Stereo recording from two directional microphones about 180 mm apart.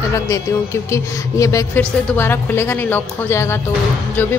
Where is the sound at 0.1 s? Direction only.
15° left (ahead or behind).